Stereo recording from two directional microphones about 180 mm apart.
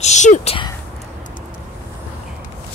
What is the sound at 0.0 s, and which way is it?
Speech, 40° left (ahead or behind).